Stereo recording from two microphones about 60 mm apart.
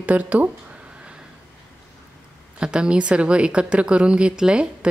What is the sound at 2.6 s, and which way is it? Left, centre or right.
A woman's voice, centre.